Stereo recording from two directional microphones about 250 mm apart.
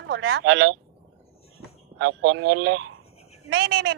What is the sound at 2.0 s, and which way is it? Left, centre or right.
A woman's voice, right.